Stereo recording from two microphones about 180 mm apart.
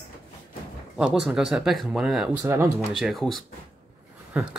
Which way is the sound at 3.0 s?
Centre (ahead or behind).